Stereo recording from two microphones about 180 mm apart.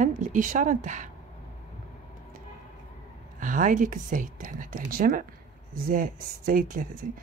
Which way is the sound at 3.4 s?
45° right (ahead or behind).